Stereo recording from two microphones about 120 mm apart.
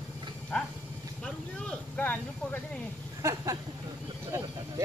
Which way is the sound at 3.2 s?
30° right (ahead or behind).